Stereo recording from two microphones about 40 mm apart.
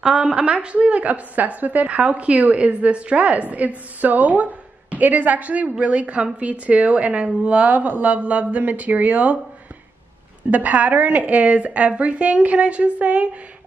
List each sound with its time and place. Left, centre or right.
0.0 s a woman's voice: centre; by 9.4 s right
10.5 s a woman's voice: right